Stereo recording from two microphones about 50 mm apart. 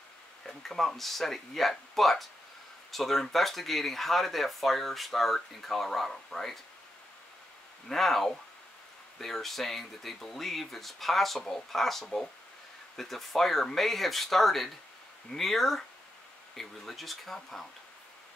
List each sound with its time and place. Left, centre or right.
0.5 s speech: centre
7.9 s speech: centre